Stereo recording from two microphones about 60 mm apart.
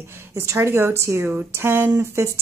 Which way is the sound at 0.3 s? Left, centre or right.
Right.